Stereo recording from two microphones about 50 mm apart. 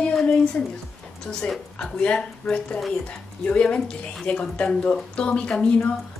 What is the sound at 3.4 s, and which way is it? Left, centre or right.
Speech, centre.